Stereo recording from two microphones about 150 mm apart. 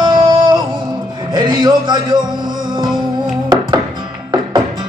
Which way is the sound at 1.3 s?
30° right (ahead or behind).